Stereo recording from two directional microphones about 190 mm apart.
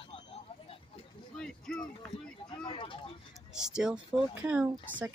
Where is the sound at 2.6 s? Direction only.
25° left (ahead or behind).